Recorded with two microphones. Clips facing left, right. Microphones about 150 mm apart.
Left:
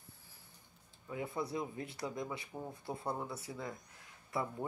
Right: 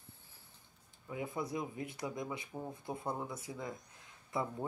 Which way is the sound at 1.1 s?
15° right (ahead or behind).